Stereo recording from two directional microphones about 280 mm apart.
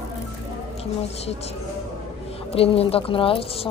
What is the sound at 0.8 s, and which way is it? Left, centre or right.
Speech, left.